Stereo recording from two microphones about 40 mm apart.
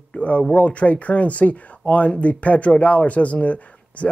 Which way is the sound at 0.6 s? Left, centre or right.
Left.